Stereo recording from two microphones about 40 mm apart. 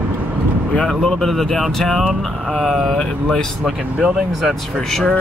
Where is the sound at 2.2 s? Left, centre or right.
Centre.